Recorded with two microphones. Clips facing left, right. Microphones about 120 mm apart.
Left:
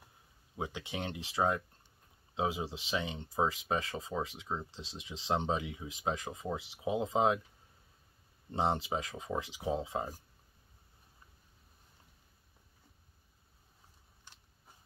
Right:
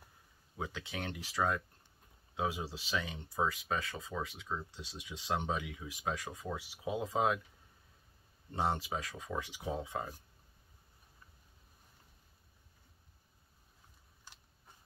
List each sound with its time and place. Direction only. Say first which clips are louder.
0.6 s speech: left 2 dB; 20° left (ahead or behind)
8.5 s speech: left 3 dB; 20° left (ahead or behind)